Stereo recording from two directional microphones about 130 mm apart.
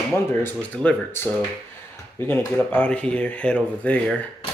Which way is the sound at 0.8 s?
15° left (ahead or behind).